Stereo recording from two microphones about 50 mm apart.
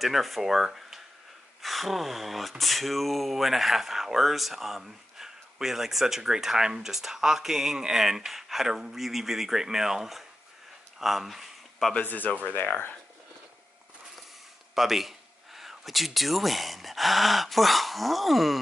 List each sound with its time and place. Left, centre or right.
0.0 s speech: centre
12.0 s speech: left
14.8 s speech: centre